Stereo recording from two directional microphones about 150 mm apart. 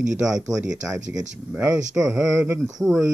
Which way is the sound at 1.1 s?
20° right (ahead or behind).